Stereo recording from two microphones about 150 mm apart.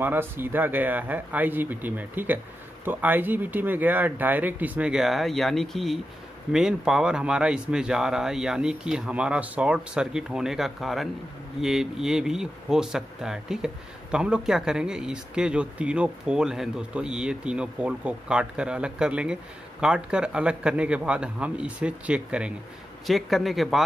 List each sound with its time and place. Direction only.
0.0 s speech: 15° right (ahead or behind)